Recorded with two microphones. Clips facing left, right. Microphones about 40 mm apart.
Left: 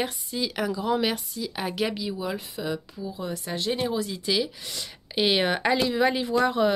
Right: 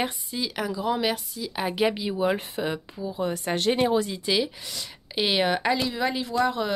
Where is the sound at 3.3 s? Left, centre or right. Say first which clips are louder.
Right 4 dB; right.